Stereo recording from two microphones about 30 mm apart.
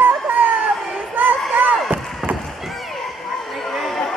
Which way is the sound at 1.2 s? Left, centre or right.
Right.